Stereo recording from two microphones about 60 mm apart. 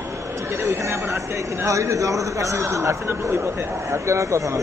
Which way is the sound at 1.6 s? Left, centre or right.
Right.